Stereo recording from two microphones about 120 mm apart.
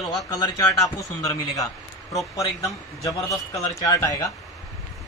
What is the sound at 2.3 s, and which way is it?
A man's voice, 30° left (ahead or behind).